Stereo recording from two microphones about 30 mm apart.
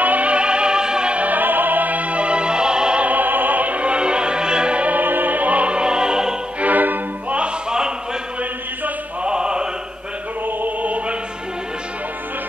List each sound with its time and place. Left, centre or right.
0.0 s music: right
0.3 s music: right
1.3 s music: right
3.0 s opera: right
3.8 s music: right
4.9 s music: right
5.7 s music: right
6.6 s music: right
7.2 s music: right
9.2 s music: right
10.4 s music: right